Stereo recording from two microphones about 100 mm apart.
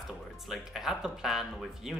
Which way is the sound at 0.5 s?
5° right (ahead or behind).